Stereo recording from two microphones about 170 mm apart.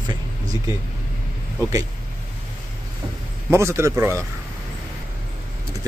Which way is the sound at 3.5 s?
15° right (ahead or behind).